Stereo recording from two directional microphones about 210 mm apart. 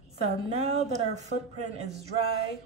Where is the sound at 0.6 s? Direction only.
30° right (ahead or behind).